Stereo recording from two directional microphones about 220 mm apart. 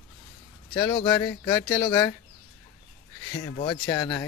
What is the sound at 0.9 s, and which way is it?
Speech, 25° left (ahead or behind).